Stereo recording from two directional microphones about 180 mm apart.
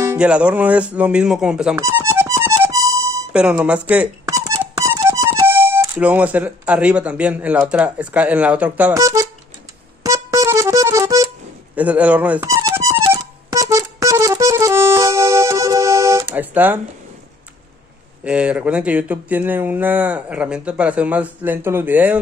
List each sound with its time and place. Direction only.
0.0 s speech: 10° right (ahead or behind)
1.8 s music: 15° right (ahead or behind)
3.3 s speech: 5° right (ahead or behind)
4.3 s speech: 20° right (ahead or behind)
10.0 s music: 15° right (ahead or behind)
11.7 s speech: 10° right (ahead or behind)
13.5 s music: 20° right (ahead or behind)
18.2 s speech: 5° right (ahead or behind)